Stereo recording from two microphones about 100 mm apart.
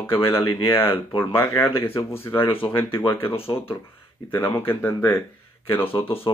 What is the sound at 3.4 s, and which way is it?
Speech, 70° left (ahead or behind).